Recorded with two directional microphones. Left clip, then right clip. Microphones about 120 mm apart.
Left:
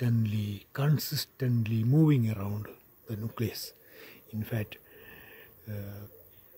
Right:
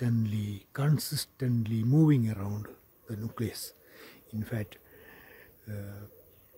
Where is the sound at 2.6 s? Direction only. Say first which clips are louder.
Left 1 dB; 15° right (ahead or behind).